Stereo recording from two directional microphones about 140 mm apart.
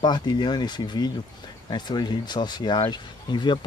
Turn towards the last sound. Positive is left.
turn(degrees=35)  # may be behind; listen again after turning